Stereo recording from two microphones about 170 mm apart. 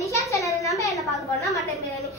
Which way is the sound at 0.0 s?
20° left (ahead or behind).